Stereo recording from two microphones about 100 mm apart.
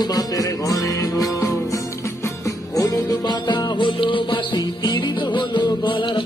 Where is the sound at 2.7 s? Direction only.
45° left (ahead or behind).